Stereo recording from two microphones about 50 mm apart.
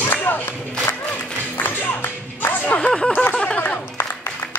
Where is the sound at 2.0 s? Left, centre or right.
Left.